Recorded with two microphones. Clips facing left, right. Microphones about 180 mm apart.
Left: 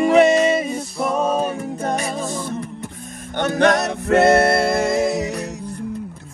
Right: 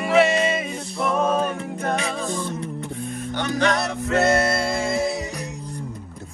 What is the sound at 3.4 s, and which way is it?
Music, 55° left (ahead or behind).